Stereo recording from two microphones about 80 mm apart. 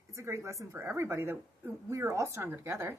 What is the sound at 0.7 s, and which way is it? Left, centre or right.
A woman's voice, right.